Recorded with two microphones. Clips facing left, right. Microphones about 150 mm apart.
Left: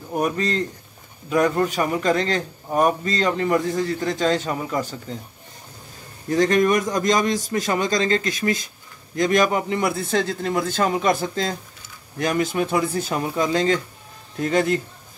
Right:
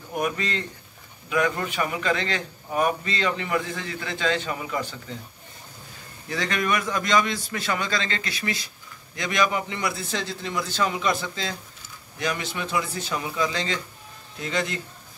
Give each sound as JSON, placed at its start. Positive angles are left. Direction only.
{"t": 0.1, "sound": "a man's voice", "side_deg": 35}
{"t": 6.2, "sound": "a man's voice", "side_deg": 40}